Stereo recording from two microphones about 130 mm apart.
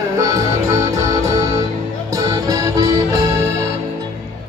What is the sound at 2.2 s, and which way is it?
Music, 25° right (ahead or behind).